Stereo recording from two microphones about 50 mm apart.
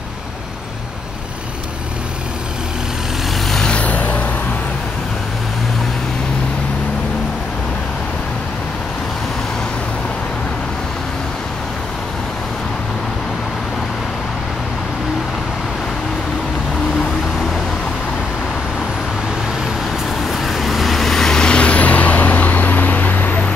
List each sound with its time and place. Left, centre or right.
3.6 s vehicle: left
20.2 s vehicle: centre; by 23.5 s left